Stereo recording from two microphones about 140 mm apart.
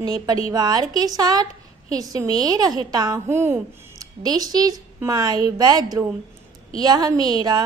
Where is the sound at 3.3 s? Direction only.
15° right (ahead or behind).